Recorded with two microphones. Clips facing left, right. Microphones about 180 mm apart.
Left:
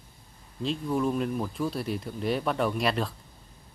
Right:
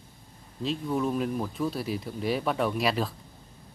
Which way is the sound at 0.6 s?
Centre (ahead or behind).